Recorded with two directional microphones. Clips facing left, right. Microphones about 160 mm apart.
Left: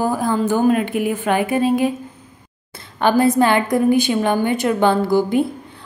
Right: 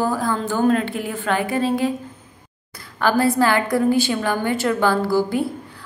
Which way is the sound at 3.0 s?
20° left (ahead or behind).